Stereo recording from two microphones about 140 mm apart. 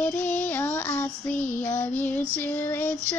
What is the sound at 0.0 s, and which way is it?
Child singing, 15° left (ahead or behind).